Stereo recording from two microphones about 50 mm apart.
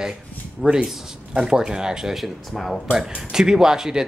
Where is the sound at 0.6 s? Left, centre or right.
Centre.